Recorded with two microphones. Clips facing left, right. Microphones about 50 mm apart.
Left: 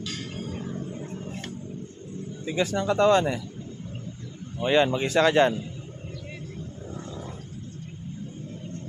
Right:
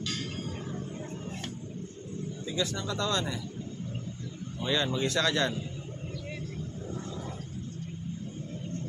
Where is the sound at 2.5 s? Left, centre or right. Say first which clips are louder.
Left 9 dB; left.